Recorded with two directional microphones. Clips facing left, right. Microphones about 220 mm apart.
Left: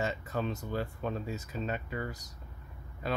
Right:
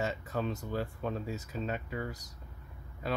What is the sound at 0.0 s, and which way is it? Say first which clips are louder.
Speech: even; centre (ahead or behind).